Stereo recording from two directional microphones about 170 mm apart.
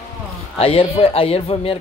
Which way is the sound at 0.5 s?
35° left (ahead or behind).